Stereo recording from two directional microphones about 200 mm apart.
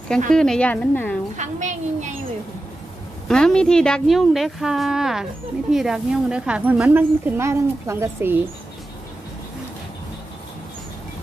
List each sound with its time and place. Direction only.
0.3 s speech: 5° left (ahead or behind)
1.3 s a woman's voice: 35° right (ahead or behind)
3.3 s speech: 5° left (ahead or behind)